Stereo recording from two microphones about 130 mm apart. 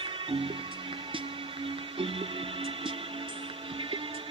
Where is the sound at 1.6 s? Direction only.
45° right (ahead or behind).